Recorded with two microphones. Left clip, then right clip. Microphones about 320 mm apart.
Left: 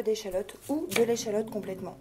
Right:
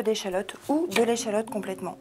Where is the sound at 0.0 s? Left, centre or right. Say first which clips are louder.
Right 3 dB; right.